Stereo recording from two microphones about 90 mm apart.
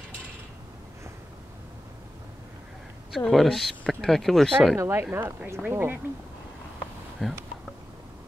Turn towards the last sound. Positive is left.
turn(degrees=-5)  # may be behind; listen again after turning